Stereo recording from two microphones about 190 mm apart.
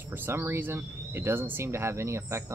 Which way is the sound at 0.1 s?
10° right (ahead or behind).